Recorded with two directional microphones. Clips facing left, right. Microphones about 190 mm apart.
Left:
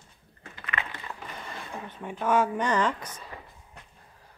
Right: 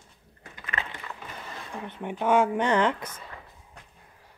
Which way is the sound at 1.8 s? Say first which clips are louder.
Right 3 dB; 20° right (ahead or behind).